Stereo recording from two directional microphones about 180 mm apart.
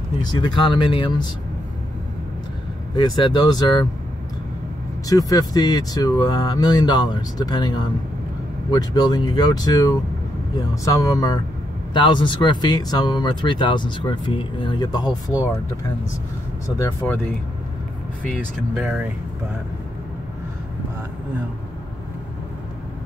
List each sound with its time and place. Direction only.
0.2 s speech: 25° left (ahead or behind)
3.0 s speech: 25° left (ahead or behind)
5.0 s speech: 20° left (ahead or behind)
8.7 s speech: 20° left (ahead or behind)
16.6 s speech: 15° left (ahead or behind)
18.8 s speech: 10° right (ahead or behind)